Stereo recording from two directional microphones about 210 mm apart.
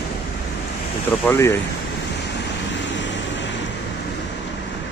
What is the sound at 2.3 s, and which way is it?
Vehicle, 55° left (ahead or behind).